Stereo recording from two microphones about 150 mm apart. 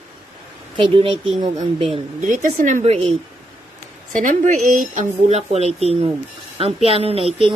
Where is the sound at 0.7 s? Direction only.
35° right (ahead or behind).